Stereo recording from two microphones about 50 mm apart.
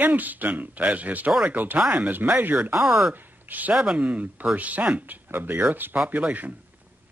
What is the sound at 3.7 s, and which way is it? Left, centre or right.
Speech, centre.